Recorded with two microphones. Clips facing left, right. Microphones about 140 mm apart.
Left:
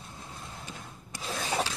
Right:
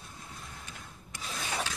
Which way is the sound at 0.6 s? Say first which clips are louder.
Left 4 dB; 30° left (ahead or behind).